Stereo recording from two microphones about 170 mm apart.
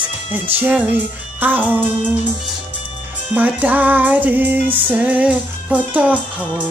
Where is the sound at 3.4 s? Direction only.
10° right (ahead or behind).